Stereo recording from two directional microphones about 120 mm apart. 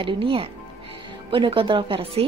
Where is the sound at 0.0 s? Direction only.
50° right (ahead or behind).